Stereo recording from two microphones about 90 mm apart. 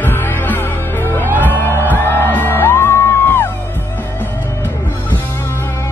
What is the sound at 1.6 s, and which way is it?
Music, 25° left (ahead or behind).